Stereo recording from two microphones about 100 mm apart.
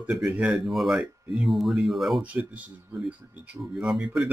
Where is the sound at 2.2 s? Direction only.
10° right (ahead or behind).